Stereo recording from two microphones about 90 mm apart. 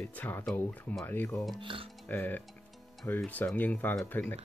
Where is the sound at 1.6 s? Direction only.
75° right (ahead or behind).